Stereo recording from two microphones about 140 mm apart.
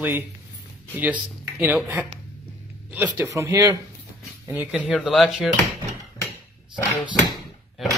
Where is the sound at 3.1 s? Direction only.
15° right (ahead or behind).